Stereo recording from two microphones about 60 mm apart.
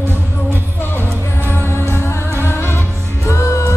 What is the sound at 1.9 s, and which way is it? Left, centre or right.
Music, left.